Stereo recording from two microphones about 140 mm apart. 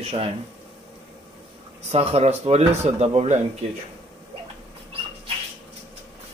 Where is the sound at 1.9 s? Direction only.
50° right (ahead or behind).